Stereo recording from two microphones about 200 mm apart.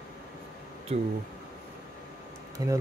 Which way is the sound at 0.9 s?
30° right (ahead or behind).